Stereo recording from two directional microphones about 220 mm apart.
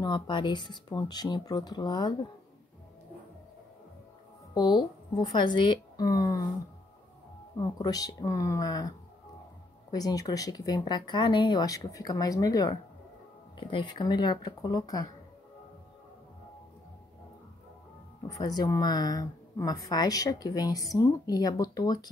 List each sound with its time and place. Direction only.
0.0 s speech: 20° left (ahead or behind)
4.6 s speech: 20° left (ahead or behind)
7.5 s a woman's voice: 15° left (ahead or behind)
18.3 s a woman's voice: 20° left (ahead or behind)